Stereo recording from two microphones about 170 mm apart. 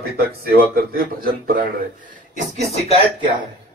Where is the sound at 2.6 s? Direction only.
35° right (ahead or behind).